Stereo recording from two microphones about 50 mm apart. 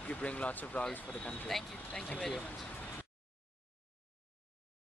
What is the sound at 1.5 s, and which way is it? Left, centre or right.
Speech, centre.